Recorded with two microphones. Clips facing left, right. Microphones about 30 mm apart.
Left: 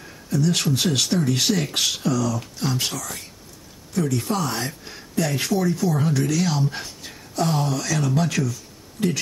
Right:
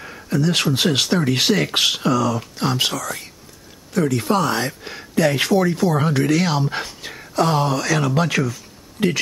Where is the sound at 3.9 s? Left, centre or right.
Right.